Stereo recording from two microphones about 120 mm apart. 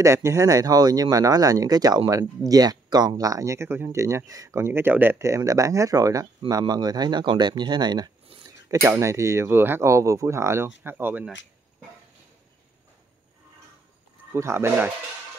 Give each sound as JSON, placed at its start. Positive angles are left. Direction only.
{"t": 0.0, "sound": "speech", "side_deg": -25}
{"t": 8.5, "sound": "speech", "side_deg": -25}
{"t": 14.3, "sound": "speech", "side_deg": -20}